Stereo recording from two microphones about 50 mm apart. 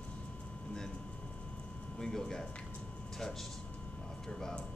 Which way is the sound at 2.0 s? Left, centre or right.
Centre.